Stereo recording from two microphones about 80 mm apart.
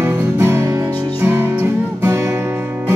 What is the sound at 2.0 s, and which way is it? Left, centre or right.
Guitar, right.